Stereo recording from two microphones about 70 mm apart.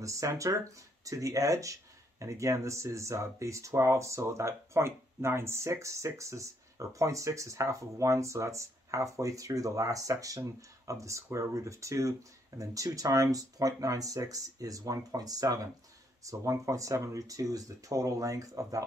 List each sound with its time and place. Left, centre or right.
0.0 s speech: right